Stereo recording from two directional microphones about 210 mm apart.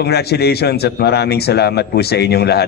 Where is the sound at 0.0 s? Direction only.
50° left (ahead or behind).